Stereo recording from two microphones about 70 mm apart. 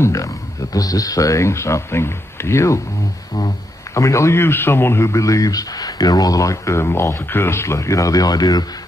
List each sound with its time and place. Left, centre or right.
0.0 s a man's voice: left
3.9 s a man's voice: left